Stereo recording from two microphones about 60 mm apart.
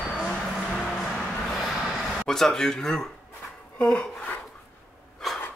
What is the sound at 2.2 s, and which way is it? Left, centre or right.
Speech, centre.